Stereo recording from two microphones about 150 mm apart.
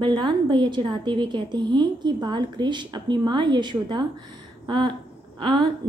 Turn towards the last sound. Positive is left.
turn(degrees=-30)  # may be behind; listen again after turning